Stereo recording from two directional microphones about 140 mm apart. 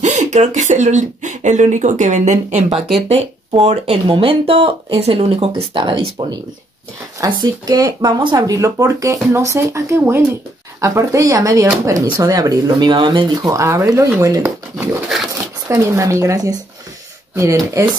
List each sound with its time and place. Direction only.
0.0 s speech: 55° right (ahead or behind)
5.5 s speech: 35° right (ahead or behind)
15.7 s speech: 20° right (ahead or behind)